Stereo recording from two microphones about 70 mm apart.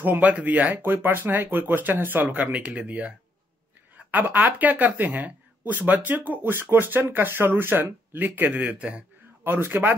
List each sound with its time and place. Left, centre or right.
0.0 s speech: right
9.4 s speech: right